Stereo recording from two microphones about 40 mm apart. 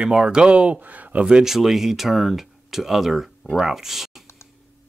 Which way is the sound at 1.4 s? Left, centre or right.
Centre.